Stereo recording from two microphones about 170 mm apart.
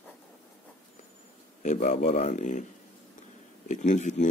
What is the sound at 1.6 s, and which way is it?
Speech, 45° left (ahead or behind).